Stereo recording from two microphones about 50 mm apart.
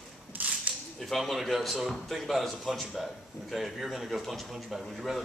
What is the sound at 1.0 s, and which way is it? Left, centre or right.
Speech, centre.